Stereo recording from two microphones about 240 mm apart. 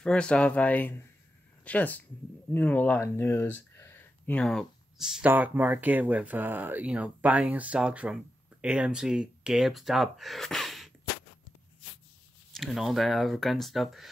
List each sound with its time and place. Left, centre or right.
0.0 s speech: centre
12.5 s speech: centre